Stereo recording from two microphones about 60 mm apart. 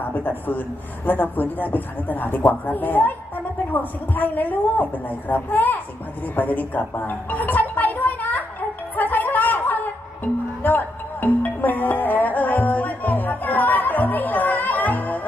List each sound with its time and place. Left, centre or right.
0.0 s a woman's voice: left
6.3 s music: left